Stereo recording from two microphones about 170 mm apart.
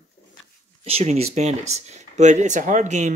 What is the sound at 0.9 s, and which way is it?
Speech, 40° right (ahead or behind).